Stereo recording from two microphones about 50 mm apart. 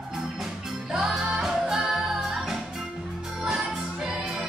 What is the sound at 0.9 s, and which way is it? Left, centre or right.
Music, centre.